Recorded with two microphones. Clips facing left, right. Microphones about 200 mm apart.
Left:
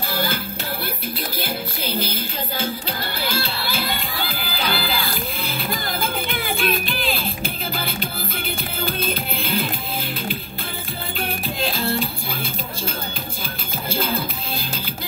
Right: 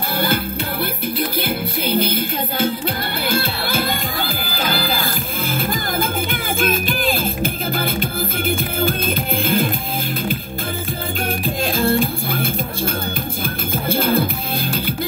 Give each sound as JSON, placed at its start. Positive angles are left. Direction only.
{"t": 0.1, "sound": "music", "side_deg": -60}
{"t": 1.4, "sound": "music", "side_deg": -55}
{"t": 11.6, "sound": "music", "side_deg": -50}